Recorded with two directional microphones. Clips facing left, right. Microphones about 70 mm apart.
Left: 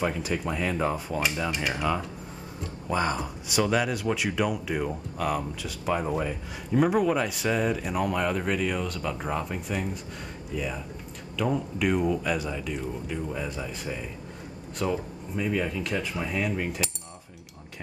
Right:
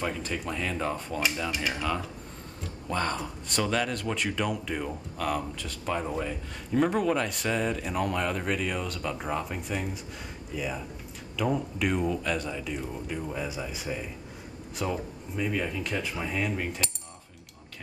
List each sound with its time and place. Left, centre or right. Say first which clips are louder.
0.0 s speech: left 4 dB; centre